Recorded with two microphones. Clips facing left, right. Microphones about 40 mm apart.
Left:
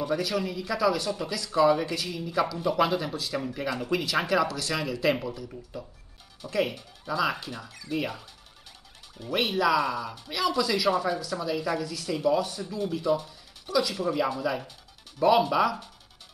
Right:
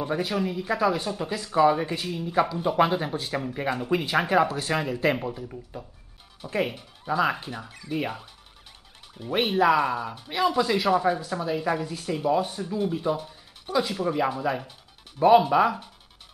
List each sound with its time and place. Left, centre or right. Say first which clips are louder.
0.0 s speech: right 1 dB; right
5.5 s speech: right 1 dB; centre
6.4 s speech: even; right